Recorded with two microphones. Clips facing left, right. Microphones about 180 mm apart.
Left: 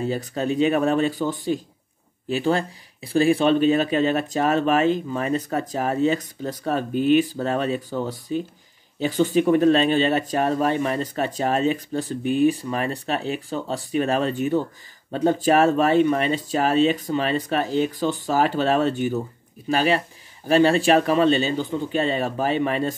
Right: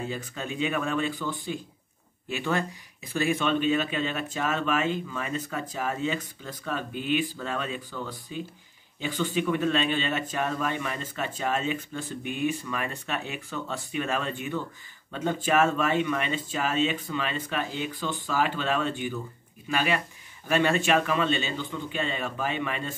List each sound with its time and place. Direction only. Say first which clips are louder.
0.0 s speech: left 9 dB; 40° left (ahead or behind)